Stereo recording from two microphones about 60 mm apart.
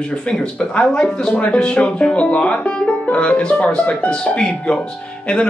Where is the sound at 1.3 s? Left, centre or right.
Centre.